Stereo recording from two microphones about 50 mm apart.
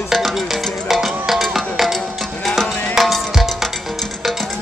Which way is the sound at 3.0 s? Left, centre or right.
Centre.